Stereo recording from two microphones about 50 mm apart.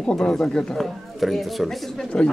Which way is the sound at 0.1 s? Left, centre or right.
Centre.